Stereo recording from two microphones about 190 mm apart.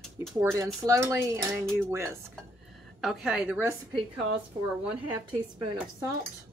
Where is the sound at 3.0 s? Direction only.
Centre (ahead or behind).